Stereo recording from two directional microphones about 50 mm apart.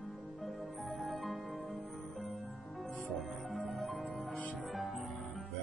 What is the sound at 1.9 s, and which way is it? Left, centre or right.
Music, centre.